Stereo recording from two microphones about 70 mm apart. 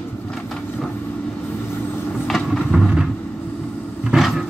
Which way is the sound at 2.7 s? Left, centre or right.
Centre.